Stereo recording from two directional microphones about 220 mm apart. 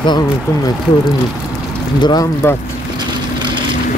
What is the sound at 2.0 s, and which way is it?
Speech, 15° left (ahead or behind).